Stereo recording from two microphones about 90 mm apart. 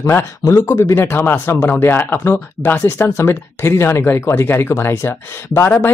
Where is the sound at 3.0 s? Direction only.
30° left (ahead or behind).